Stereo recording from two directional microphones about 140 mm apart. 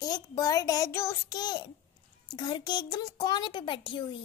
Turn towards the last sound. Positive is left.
turn(degrees=35)  # may be behind; listen again after turning